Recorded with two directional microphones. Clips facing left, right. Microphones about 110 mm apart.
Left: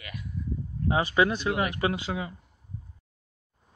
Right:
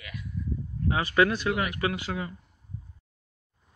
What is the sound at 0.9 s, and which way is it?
Speech, 25° left (ahead or behind).